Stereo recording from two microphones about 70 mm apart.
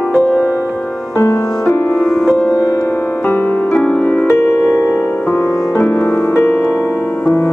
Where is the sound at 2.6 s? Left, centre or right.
Left.